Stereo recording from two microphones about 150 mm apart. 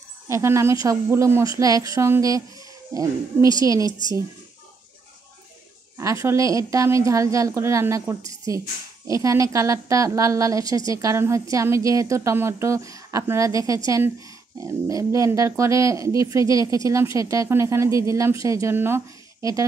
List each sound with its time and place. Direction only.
0.3 s a woman's voice: 20° right (ahead or behind)
5.9 s a woman's voice: 20° right (ahead or behind)